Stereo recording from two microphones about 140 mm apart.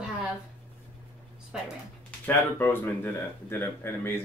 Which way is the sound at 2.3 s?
15° left (ahead or behind).